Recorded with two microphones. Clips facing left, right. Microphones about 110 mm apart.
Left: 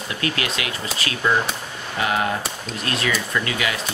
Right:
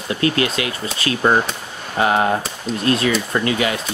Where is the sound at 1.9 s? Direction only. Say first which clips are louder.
Right 6 dB; 30° right (ahead or behind).